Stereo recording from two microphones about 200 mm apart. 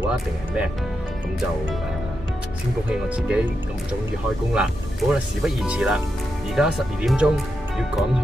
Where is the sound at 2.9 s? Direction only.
5° right (ahead or behind).